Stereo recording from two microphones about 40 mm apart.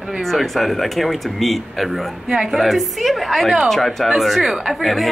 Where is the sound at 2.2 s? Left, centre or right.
Centre.